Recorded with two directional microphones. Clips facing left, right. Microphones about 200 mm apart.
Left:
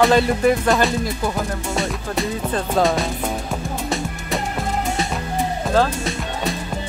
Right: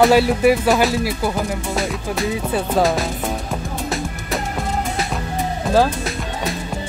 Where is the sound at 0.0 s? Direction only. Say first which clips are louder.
Right 2 dB; 5° right (ahead or behind).